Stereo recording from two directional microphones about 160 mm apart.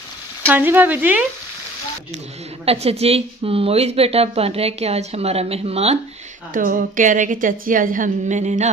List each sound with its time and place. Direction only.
0.5 s speech: 10° right (ahead or behind)
2.6 s a woman's voice: 40° right (ahead or behind)
6.5 s a woman's voice: 60° right (ahead or behind)